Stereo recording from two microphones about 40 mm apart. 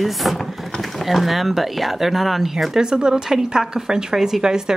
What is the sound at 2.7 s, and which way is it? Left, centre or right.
Speech, centre.